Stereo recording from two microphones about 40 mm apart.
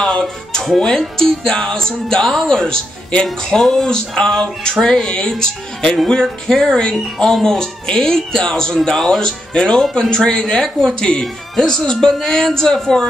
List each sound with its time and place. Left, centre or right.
0.0 s speech: centre
9.2 s speech: left